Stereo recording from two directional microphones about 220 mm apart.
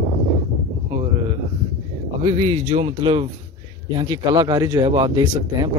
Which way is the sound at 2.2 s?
30° right (ahead or behind).